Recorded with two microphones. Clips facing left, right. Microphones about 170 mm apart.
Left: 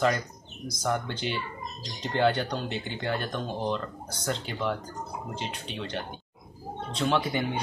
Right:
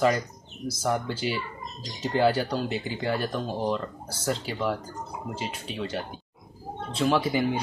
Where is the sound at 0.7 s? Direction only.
5° right (ahead or behind).